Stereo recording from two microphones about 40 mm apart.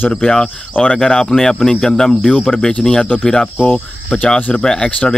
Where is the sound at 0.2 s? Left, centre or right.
Centre.